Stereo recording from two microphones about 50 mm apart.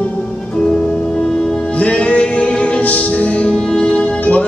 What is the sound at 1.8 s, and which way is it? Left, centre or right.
Music, left.